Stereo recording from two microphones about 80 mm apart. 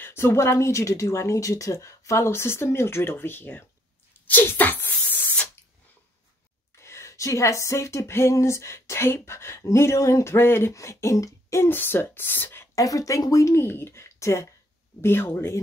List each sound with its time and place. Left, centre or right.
0.0 s speech: left
4.9 s a sound: left
6.8 s speech: left
12.7 s speech: left
13.7 s speech: left